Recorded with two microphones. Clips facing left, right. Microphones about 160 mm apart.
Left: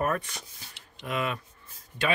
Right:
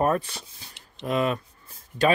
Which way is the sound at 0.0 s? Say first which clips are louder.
Right 5 dB; 30° right (ahead or behind).